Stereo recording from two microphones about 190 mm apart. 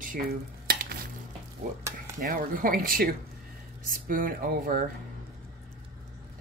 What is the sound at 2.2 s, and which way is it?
Speech, 45° right (ahead or behind).